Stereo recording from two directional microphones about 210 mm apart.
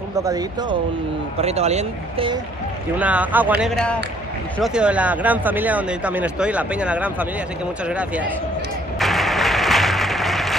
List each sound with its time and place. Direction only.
0.2 s speech: 15° right (ahead or behind)
1.4 s speech: 30° right (ahead or behind)
3.0 s speech: 5° right (ahead or behind)
9.0 s a sound: centre (ahead or behind)